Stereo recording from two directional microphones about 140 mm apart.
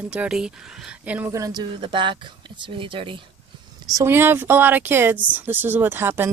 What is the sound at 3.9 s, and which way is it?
Speech, 20° right (ahead or behind).